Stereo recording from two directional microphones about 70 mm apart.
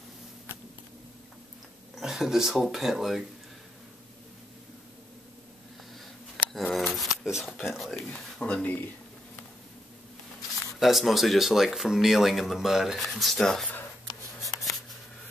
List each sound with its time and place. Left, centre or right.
2.0 s speech: centre
6.7 s shuffling cards: centre
7.5 s speech: centre
8.1 s speech: centre
8.6 s speech: left
10.8 s speech: centre